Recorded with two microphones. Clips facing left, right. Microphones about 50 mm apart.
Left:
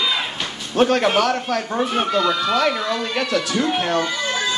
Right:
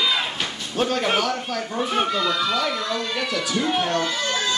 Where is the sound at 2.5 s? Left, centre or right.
Left.